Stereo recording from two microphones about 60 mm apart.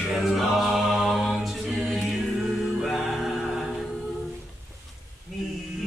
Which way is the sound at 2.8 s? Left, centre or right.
Centre.